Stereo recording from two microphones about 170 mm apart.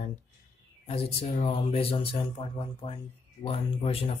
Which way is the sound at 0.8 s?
35° left (ahead or behind).